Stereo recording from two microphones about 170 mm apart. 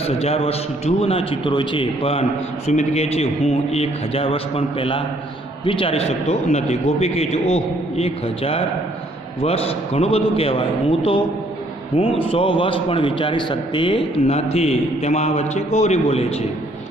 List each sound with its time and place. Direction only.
0.0 s a man's voice: 35° left (ahead or behind)
12.3 s a man's voice: 30° left (ahead or behind)